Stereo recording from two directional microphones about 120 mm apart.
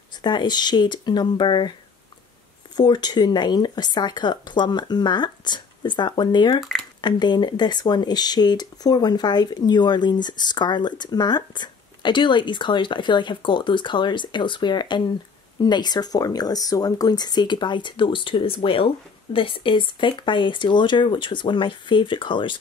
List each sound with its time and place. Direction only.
0.2 s speech: 35° left (ahead or behind)
2.7 s speech: 35° left (ahead or behind)